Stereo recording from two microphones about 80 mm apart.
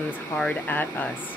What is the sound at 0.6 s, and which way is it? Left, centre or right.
Speech, left.